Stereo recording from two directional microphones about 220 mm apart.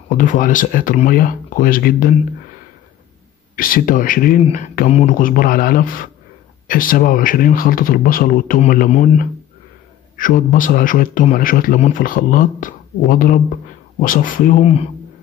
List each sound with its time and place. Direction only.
0.2 s a man's voice: 35° left (ahead or behind)
3.5 s a man's voice: 40° left (ahead or behind)